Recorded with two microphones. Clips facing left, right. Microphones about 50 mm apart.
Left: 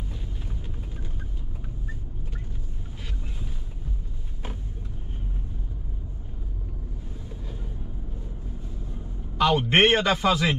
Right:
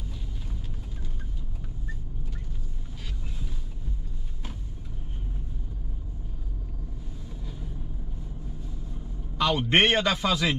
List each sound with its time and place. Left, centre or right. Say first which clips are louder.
9.4 s a man's voice: left 3 dB; centre